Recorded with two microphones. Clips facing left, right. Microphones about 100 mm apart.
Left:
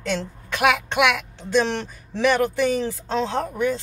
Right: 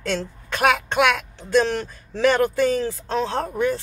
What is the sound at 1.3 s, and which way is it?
Speech, 20° left (ahead or behind).